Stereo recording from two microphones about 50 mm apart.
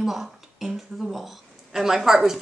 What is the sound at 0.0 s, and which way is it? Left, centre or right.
Speech, centre.